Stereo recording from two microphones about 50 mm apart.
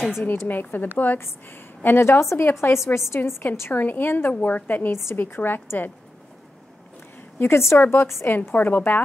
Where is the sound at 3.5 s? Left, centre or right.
Left.